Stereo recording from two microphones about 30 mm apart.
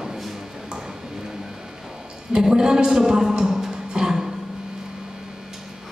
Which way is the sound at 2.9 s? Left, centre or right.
Centre.